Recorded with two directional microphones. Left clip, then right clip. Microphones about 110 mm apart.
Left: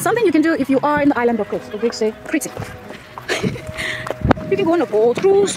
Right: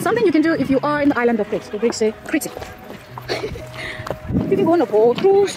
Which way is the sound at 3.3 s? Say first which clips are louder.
Left 3 dB; 15° left (ahead or behind).